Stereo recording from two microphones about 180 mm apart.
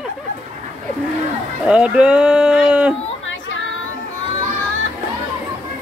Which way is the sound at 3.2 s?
90° left.